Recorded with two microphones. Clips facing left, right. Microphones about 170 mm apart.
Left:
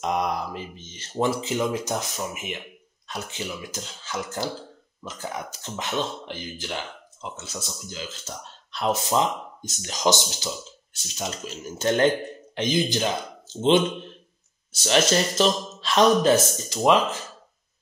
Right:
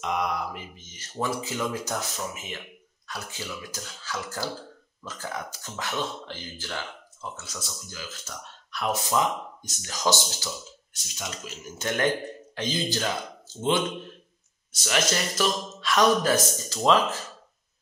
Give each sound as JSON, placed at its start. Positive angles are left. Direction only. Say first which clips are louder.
{"t": 0.0, "sound": "speech", "louder": "left 3 dB", "side_deg": 35}
{"t": 11.1, "sound": "speech", "louder": "left 5 dB", "side_deg": 30}
{"t": 12.5, "sound": "speech", "louder": "left 5 dB", "side_deg": 15}